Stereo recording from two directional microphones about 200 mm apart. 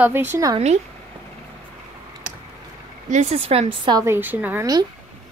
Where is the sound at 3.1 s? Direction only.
30° right (ahead or behind); by 4.9 s 15° right (ahead or behind).